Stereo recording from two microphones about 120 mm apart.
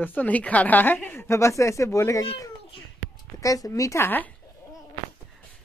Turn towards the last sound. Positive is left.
turn(degrees=15)  # may be behind; listen again after turning